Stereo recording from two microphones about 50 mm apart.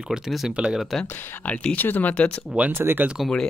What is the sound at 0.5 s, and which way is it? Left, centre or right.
Speech, right.